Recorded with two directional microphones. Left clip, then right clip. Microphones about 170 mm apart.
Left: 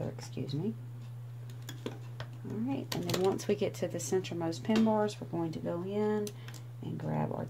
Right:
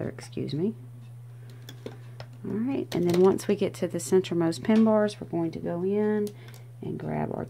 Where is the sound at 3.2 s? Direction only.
40° right (ahead or behind); by 7.4 s 60° right (ahead or behind).